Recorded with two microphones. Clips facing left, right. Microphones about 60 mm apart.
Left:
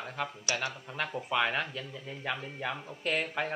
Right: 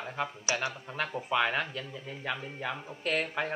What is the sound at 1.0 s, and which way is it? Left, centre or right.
Speech, centre.